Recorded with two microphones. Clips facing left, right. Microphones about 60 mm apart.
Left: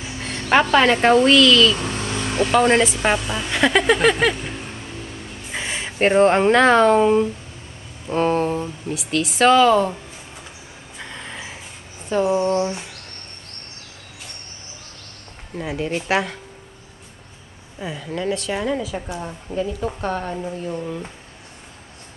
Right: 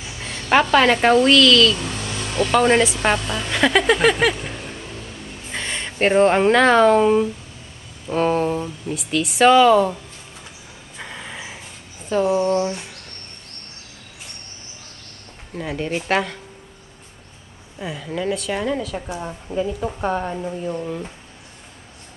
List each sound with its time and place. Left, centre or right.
0.2 s a sound: centre
1.0 s speech: centre
1.8 s vehicle: left
2.6 s a woman's voice: centre
11.0 s a sound: centre
12.1 s a woman's voice: centre
15.5 s a woman's voice: centre
17.7 s a woman's voice: centre